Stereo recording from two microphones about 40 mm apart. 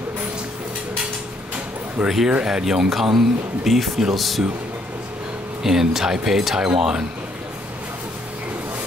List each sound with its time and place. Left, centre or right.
2.0 s speech: centre
5.6 s speech: centre